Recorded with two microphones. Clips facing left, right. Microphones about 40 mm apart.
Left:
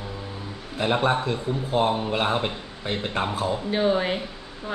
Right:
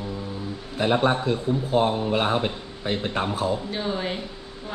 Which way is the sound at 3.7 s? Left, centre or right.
Centre.